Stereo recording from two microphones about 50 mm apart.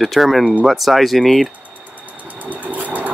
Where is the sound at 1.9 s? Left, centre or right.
Right.